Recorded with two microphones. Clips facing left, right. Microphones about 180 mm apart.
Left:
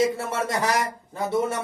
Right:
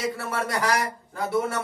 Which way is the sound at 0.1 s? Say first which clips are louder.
Left 2 dB; 25° left (ahead or behind).